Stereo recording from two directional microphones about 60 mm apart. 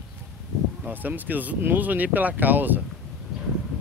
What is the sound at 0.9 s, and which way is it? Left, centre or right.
Speech, right.